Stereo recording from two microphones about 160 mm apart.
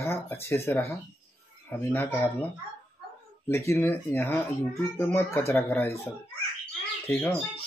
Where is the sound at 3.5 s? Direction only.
15° left (ahead or behind).